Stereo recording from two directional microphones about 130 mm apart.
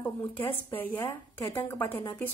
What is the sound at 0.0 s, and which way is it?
A woman's voice, 15° left (ahead or behind).